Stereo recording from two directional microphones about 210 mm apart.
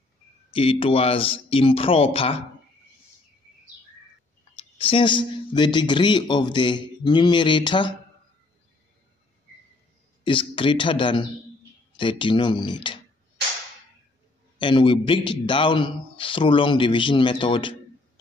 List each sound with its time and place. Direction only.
0.5 s a man's voice: 25° left (ahead or behind)
4.7 s a man's voice: 25° left (ahead or behind)
10.2 s a man's voice: 25° left (ahead or behind)
14.6 s a man's voice: 25° left (ahead or behind)